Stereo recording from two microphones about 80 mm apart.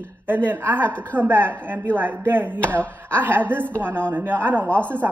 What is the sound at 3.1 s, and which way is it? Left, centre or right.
A woman's voice, right.